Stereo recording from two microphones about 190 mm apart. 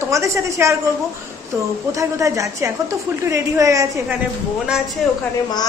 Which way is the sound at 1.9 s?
15° right (ahead or behind).